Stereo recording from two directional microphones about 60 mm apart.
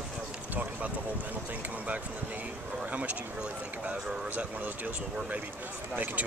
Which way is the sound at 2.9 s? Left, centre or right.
Right.